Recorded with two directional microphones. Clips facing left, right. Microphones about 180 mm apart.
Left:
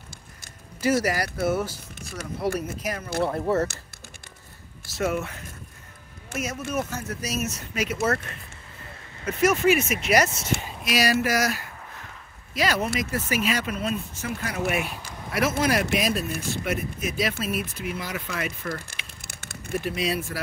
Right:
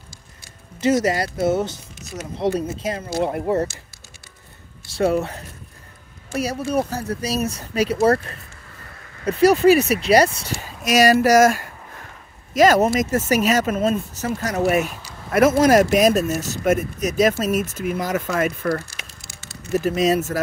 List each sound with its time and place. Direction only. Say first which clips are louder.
0.7 s speech: right 5 dB; 25° right (ahead or behind)
3.2 s speech: right 2 dB; 15° right (ahead or behind)
4.9 s speech: right 7 dB; 35° right (ahead or behind)
10.4 s speech: even; 45° right (ahead or behind)
19.2 s a sound: right 1 dB; 60° left (ahead or behind)
19.7 s speech: right 8 dB; 45° right (ahead or behind)